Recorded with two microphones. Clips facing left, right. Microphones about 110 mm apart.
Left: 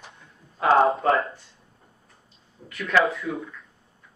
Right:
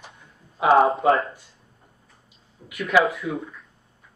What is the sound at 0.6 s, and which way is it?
Speech, 10° right (ahead or behind).